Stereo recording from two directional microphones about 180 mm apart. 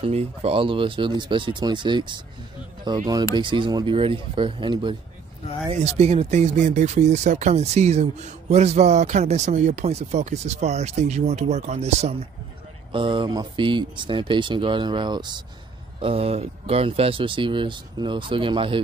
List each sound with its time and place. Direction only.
0.0 s speech: 35° right (ahead or behind)
12.9 s speech: 25° right (ahead or behind)